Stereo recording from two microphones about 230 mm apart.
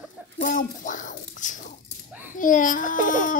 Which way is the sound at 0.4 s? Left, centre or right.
Left.